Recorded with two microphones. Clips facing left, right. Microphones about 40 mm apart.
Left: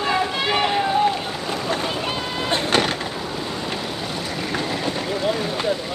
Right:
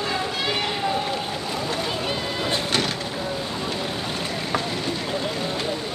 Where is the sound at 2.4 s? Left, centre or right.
Left.